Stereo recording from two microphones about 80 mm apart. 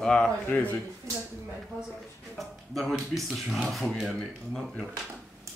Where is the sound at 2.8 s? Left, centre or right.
Centre.